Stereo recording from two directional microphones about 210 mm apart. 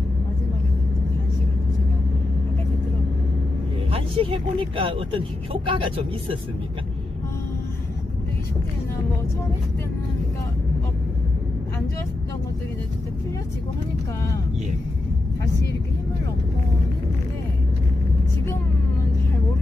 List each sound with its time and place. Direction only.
3.9 s speech: 25° right (ahead or behind)